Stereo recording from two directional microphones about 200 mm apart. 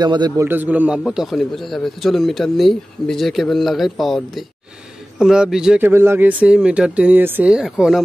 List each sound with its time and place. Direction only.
0.0 s a man's voice: 20° right (ahead or behind)
0.5 s a man's voice: 10° right (ahead or behind)